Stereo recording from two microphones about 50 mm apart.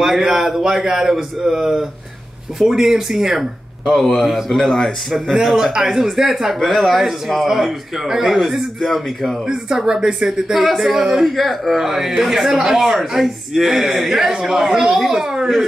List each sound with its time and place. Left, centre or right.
0.0 s a man's voice: centre
3.9 s speech: centre
5.1 s a man's voice: centre
9.5 s a man's voice: centre
11.3 s a man's voice: centre